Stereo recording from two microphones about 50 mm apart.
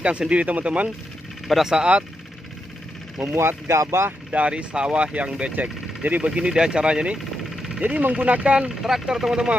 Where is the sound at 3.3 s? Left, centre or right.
Right.